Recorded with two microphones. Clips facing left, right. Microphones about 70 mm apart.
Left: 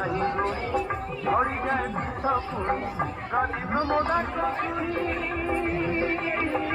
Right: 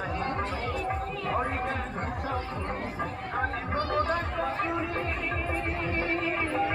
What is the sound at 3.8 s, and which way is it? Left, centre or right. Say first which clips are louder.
Speech: left 3 dB; left.